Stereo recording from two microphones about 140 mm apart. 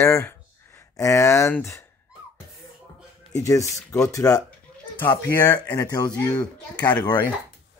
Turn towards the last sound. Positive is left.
turn(degrees=30)  # may be behind; listen again after turning